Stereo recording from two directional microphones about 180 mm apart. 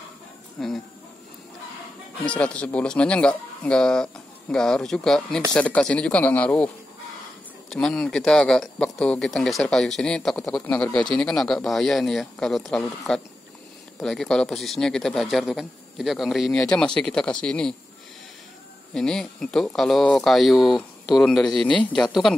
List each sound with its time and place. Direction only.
0.6 s speech: centre (ahead or behind)
2.2 s a man's voice: 5° left (ahead or behind)
7.7 s speech: 5° left (ahead or behind)
18.9 s speech: 5° left (ahead or behind)